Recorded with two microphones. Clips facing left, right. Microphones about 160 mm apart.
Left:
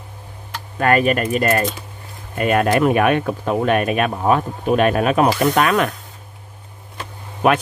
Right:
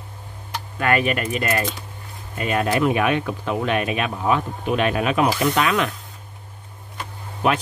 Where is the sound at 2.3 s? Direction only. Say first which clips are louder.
Left 5 dB; 55° left (ahead or behind).